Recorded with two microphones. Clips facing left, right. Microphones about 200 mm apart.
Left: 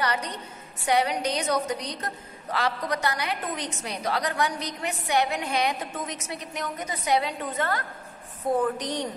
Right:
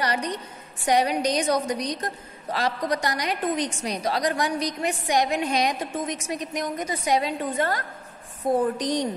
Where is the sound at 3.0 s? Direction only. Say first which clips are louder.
Right 2 dB; 15° right (ahead or behind).